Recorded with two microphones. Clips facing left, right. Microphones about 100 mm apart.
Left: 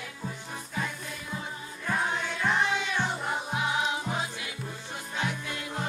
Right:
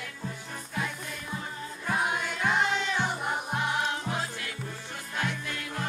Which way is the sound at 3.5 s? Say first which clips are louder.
Left 1 dB; 10° left (ahead or behind).